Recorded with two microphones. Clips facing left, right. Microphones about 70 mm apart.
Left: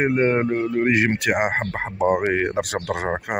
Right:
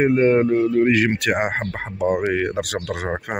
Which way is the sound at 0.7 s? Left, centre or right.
Left.